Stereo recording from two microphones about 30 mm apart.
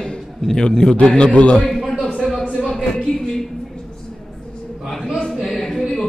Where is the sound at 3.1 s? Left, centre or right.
Left.